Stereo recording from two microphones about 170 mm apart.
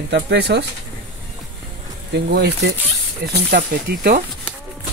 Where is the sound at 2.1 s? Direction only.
70° right (ahead or behind).